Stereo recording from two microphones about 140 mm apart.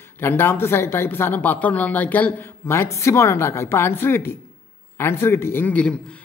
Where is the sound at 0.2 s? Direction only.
15° left (ahead or behind).